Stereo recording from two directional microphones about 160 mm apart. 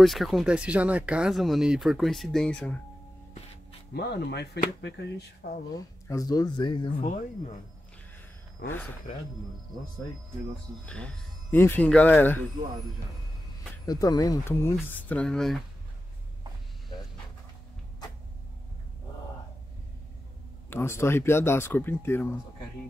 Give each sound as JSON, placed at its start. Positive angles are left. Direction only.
{"t": 0.0, "sound": "speech", "side_deg": 0}
{"t": 3.9, "sound": "speech", "side_deg": 90}
{"t": 5.4, "sound": "speech", "side_deg": 75}
{"t": 5.8, "sound": "speech", "side_deg": 20}
{"t": 8.6, "sound": "speech", "side_deg": 10}
{"t": 10.9, "sound": "speech", "side_deg": 5}
{"t": 13.8, "sound": "speech", "side_deg": 20}
{"t": 20.7, "sound": "speech", "side_deg": 15}